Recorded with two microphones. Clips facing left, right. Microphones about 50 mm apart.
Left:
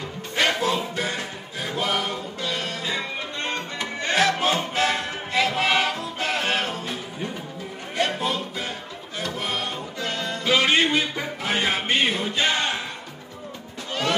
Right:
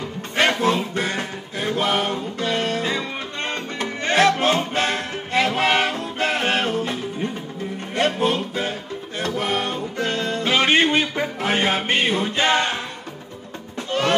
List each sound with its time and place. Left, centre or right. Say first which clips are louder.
0.4 s music: right 4 dB; right